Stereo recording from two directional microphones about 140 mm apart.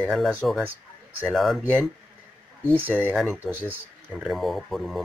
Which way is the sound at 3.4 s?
15° right (ahead or behind).